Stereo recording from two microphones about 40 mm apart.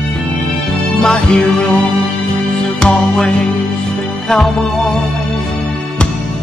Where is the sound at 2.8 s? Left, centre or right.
Left.